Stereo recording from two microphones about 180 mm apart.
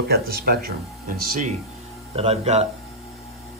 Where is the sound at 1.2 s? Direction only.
50° right (ahead or behind).